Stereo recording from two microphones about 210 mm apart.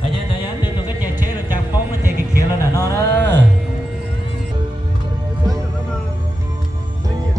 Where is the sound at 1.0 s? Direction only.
10° right (ahead or behind).